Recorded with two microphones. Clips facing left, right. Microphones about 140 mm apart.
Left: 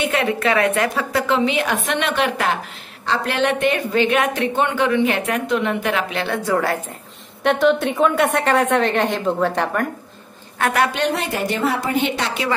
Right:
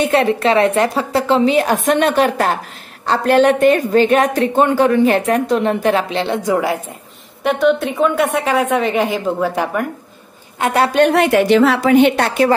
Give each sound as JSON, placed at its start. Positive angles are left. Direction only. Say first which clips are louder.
{"t": 0.0, "sound": "a woman's voice", "louder": "right 5 dB", "side_deg": -35}
{"t": 7.4, "sound": "a woman's voice", "louder": "right 2 dB", "side_deg": 0}
{"t": 10.6, "sound": "a woman's voice", "louder": "right 3 dB", "side_deg": -25}
{"t": 10.9, "sound": "a woman's voice", "louder": "right 9 dB", "side_deg": -55}